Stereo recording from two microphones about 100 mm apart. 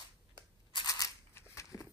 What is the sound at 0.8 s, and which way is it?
Scissors, 35° left (ahead or behind).